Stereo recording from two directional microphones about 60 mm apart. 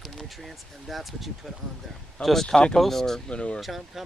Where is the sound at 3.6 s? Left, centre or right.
Centre.